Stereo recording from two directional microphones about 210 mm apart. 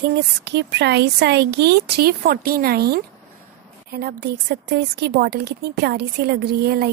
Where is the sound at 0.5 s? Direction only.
55° right (ahead or behind).